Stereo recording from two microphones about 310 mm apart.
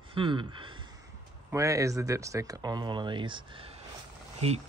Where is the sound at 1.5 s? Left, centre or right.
Centre.